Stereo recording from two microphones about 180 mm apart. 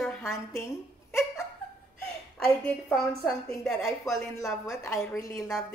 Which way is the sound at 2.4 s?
5° left (ahead or behind).